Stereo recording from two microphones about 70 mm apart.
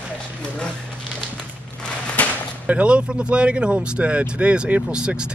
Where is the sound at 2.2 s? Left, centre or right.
Left.